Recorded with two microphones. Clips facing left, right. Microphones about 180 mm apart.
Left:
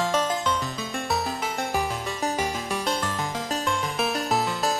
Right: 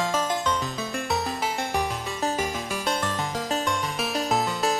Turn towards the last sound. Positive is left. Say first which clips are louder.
# even
turn(degrees=0)  # may be behind; listen again after turning